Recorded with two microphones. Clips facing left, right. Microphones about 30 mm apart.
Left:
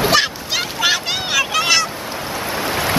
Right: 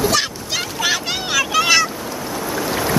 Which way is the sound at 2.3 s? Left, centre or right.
Left.